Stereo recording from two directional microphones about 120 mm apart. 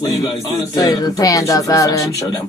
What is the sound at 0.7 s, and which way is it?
Speech, 30° left (ahead or behind).